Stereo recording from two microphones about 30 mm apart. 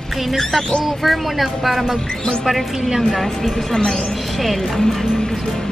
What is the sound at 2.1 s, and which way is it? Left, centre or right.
Music, left.